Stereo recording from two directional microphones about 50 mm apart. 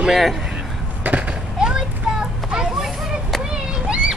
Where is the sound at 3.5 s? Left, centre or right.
Right.